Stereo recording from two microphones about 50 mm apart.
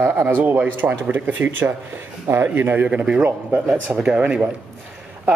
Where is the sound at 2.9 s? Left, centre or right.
Centre.